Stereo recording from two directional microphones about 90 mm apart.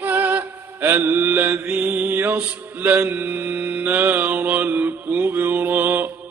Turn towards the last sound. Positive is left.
turn(degrees=-20)  # may be behind; listen again after turning